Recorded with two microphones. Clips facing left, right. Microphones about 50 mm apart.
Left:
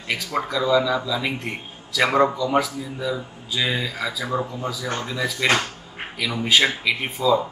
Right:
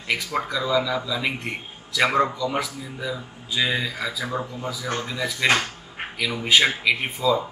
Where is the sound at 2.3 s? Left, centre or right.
Centre.